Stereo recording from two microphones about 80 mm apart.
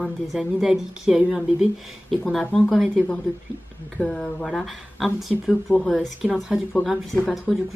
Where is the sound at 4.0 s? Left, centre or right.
Centre.